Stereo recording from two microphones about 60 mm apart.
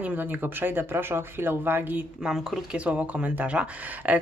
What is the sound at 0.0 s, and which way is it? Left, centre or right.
Speech, right.